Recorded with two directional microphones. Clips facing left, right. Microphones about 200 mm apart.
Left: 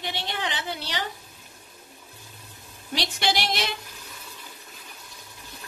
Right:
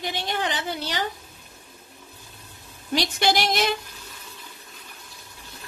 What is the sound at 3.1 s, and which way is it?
Speech, 45° right (ahead or behind).